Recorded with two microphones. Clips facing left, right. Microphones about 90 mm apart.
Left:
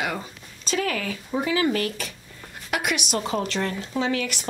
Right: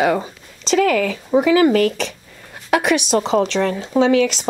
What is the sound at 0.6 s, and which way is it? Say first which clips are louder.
Speech: right 10 dB; 85° right.